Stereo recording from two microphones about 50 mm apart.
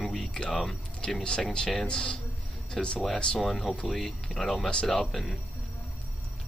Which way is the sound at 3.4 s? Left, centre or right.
Centre.